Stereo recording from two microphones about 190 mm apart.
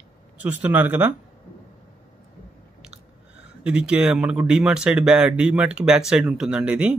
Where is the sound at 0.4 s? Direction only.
10° right (ahead or behind).